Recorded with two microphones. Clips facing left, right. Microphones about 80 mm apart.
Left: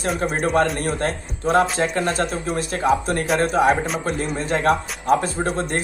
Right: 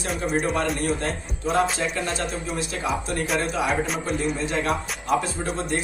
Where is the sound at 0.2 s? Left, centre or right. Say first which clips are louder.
Left 4 dB; left.